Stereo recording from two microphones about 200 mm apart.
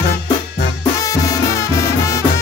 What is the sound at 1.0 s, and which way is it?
Music, 15° left (ahead or behind).